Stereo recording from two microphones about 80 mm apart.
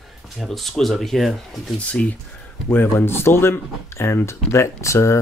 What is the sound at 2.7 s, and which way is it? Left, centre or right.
Speech, left.